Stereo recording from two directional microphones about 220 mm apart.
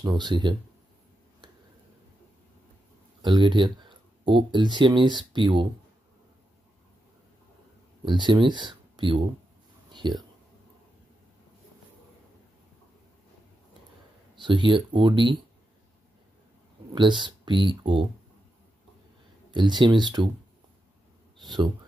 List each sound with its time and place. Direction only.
0.0 s speech: 20° right (ahead or behind)
3.2 s speech: 20° right (ahead or behind)
8.0 s speech: 20° right (ahead or behind)
14.3 s speech: 20° right (ahead or behind)
16.9 s speech: 20° right (ahead or behind)
19.5 s speech: 20° right (ahead or behind)